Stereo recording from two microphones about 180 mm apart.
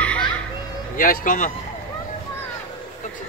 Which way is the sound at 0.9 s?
50° left (ahead or behind).